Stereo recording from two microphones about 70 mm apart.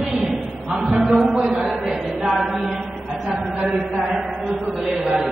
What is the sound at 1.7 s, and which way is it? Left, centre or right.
Choir, centre.